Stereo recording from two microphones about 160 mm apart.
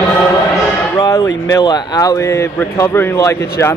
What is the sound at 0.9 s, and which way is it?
Speech, 20° left (ahead or behind).